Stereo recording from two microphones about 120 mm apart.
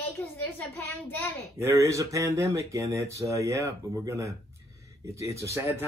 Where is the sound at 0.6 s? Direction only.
15° left (ahead or behind).